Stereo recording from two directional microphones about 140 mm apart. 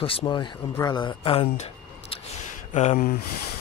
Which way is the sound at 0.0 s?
35° left (ahead or behind).